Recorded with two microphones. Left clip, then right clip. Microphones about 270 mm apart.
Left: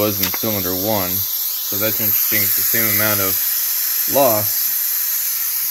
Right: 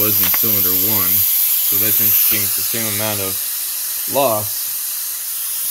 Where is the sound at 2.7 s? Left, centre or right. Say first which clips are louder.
Left 4 dB; centre.